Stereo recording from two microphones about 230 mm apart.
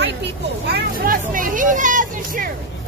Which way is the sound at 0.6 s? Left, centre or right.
Right.